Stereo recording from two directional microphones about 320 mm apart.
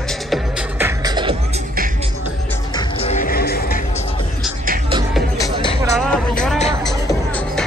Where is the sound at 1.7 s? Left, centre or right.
Right.